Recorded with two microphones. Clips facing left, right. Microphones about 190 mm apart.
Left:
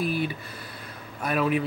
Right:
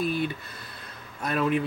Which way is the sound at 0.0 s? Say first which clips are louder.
Even; 5° left (ahead or behind).